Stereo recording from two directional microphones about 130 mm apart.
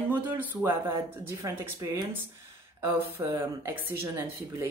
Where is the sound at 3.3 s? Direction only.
20° right (ahead or behind).